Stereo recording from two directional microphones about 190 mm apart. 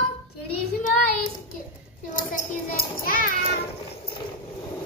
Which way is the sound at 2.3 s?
50° left (ahead or behind).